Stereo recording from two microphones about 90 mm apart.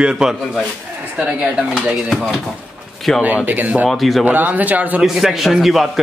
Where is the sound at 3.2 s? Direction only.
20° right (ahead or behind).